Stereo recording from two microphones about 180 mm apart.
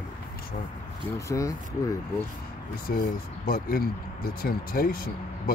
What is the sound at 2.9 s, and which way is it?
Speech, 55° left (ahead or behind).